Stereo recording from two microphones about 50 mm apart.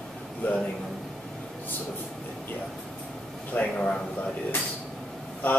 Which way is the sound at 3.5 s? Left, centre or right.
Left.